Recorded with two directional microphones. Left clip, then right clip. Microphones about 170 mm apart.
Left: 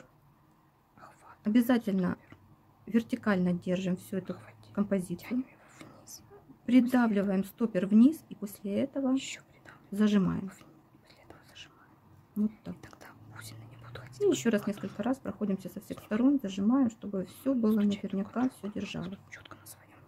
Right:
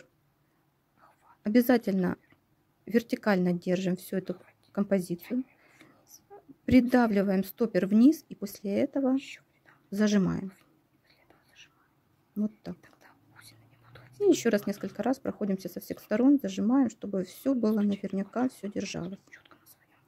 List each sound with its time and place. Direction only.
1.4 s speech: 40° right (ahead or behind)
5.1 s a sound: 25° left (ahead or behind)
6.6 s speech: 40° right (ahead or behind)
9.1 s whispering: 25° left (ahead or behind)
9.9 s speech: 35° right (ahead or behind)
11.2 s whispering: 25° left (ahead or behind)
12.8 s whispering: 25° left (ahead or behind)
14.2 s speech: 35° right (ahead or behind)
19.0 s a sound: 20° left (ahead or behind)